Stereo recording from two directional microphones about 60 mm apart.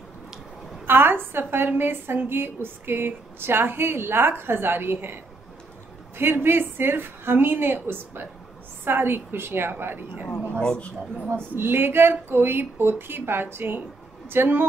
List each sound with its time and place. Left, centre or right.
0.8 s a woman's voice: right
10.6 s a man's voice: centre
11.5 s a woman's voice: right